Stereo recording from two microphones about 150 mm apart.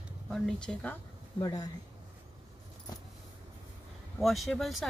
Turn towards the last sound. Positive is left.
turn(degrees=0)  # may be behind; listen again after turning